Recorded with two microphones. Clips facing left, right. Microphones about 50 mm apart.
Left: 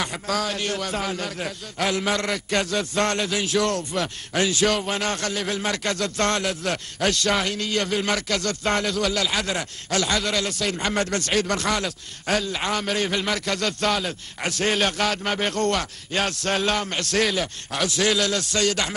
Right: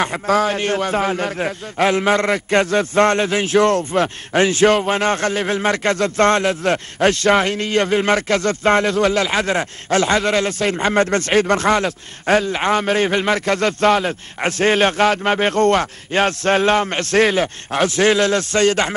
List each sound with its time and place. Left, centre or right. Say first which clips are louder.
0.0 s a man's voice: right 9 dB; right